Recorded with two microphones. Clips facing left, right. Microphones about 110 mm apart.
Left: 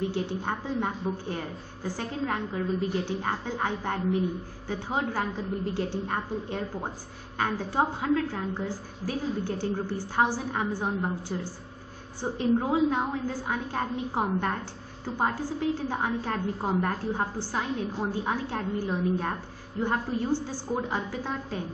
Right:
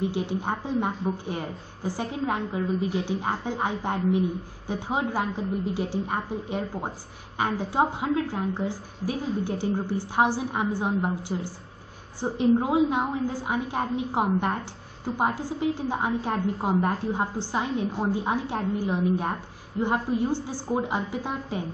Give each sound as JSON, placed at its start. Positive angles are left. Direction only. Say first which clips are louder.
{"t": 0.0, "sound": "a woman's voice", "louder": "right 2 dB", "side_deg": -15}